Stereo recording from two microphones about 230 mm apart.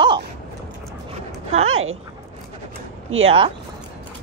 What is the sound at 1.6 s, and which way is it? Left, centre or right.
Speech, right.